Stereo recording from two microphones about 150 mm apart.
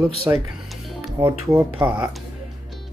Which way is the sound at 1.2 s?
30° right (ahead or behind).